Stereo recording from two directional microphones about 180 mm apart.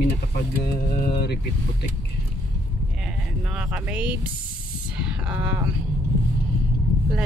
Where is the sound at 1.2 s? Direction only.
65° left (ahead or behind).